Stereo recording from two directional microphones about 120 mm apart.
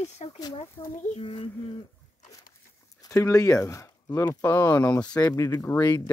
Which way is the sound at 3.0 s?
25° left (ahead or behind).